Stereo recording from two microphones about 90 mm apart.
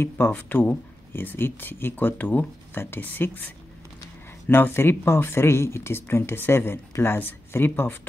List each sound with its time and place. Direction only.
0.0 s speech: 25° left (ahead or behind)